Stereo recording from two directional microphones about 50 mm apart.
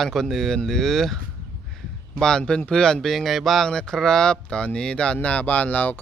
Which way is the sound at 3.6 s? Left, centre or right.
Centre.